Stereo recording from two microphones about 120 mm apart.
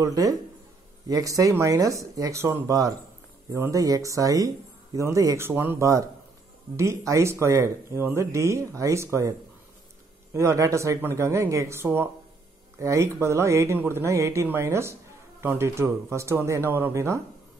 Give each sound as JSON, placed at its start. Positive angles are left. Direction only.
{"t": 0.0, "sound": "speech", "side_deg": -30}
{"t": 10.3, "sound": "speech", "side_deg": -25}